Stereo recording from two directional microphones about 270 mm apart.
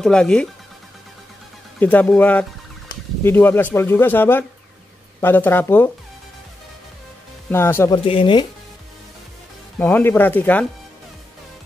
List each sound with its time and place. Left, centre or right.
0.0 s speech: centre
1.8 s speech: centre
7.5 s speech: centre
9.8 s speech: centre